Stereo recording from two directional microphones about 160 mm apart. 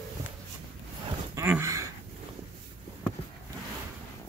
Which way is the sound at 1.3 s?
15° right (ahead or behind).